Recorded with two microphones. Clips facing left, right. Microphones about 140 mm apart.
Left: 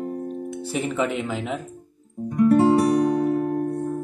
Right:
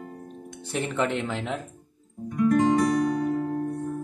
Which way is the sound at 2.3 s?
35° left (ahead or behind).